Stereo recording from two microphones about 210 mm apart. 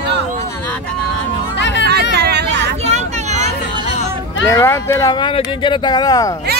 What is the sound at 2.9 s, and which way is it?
Vehicle, 35° right (ahead or behind).